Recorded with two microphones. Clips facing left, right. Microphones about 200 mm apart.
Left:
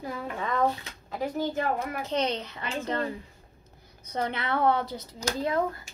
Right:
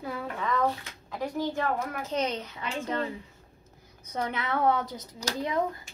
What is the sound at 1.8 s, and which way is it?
Speech, 30° left (ahead or behind).